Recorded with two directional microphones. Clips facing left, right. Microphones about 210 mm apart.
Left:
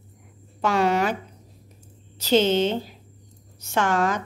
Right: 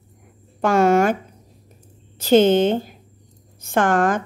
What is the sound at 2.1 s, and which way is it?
A woman's voice, 50° right (ahead or behind).